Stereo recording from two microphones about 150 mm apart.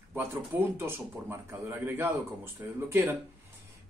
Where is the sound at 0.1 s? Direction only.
15° right (ahead or behind).